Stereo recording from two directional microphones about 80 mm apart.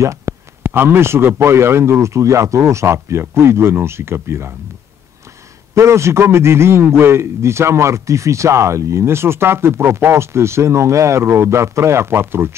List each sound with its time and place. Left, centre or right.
0.0 s a man's voice: right
5.8 s a man's voice: right